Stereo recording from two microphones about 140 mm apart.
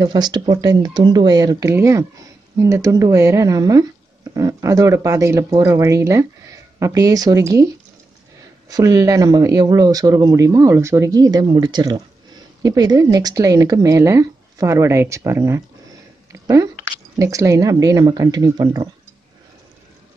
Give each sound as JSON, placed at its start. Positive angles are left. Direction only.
{"t": 0.0, "sound": "speech", "side_deg": -30}